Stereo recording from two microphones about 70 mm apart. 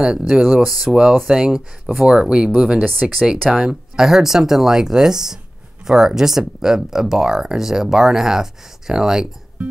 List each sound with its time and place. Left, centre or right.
0.0 s speech: centre
2.8 s speech: right
3.2 s speech: centre